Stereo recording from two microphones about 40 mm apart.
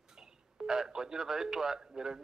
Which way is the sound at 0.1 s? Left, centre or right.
Centre.